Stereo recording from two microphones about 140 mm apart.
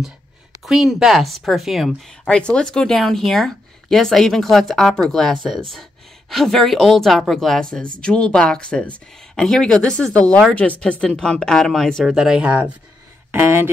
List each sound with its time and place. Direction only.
0.7 s speech: centre (ahead or behind); by 13.7 s 20° right (ahead or behind)